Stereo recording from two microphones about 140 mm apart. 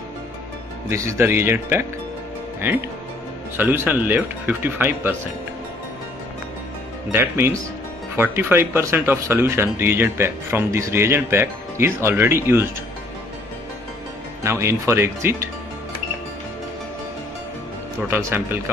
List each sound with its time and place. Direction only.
0.8 s speech: 20° right (ahead or behind)
3.5 s speech: 15° right (ahead or behind)
7.1 s speech: 15° right (ahead or behind)
14.4 s speech: 20° right (ahead or behind)
18.1 s speech: 15° right (ahead or behind)